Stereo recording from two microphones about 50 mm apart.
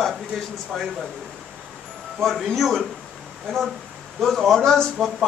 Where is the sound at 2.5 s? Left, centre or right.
Centre.